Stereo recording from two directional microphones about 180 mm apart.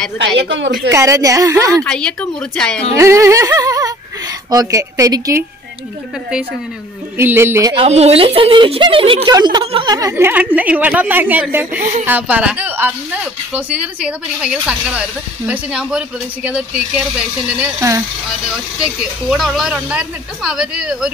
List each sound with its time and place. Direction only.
0.2 s a woman's voice: 90° right
0.9 s speech: 15° right (ahead or behind)
1.9 s speech: 5° left (ahead or behind)
3.0 s speech: 15° right (ahead or behind)
7.2 s speech: 15° right (ahead or behind)
7.7 s speech: 35° right (ahead or behind); by 21.1 s 5° right (ahead or behind)